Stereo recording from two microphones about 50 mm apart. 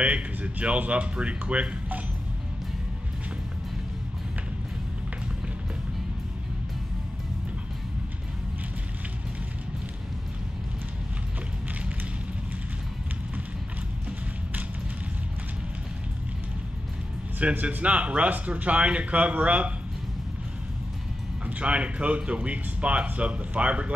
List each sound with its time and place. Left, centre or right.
0.0 s speech: right
17.4 s speech: right
21.5 s speech: right